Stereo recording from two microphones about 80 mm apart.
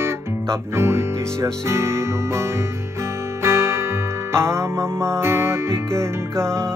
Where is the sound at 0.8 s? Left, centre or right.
Right.